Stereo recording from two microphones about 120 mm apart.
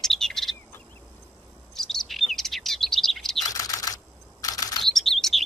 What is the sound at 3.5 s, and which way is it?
Typing, 30° left (ahead or behind).